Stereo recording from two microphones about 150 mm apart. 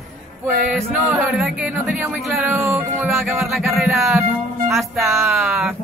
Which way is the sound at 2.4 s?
15° right (ahead or behind).